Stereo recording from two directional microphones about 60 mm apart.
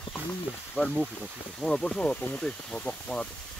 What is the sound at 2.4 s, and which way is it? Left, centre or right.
Speech, centre.